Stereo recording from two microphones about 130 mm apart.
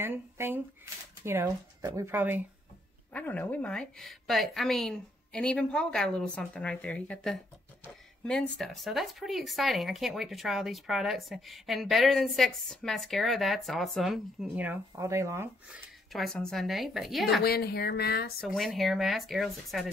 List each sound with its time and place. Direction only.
0.0 s speech: 15° right (ahead or behind)
3.1 s a woman's voice: 10° left (ahead or behind); by 14.8 s 10° right (ahead or behind)
15.0 s speech: 25° right (ahead or behind)
16.1 s speech: centre (ahead or behind)
18.5 s speech: centre (ahead or behind)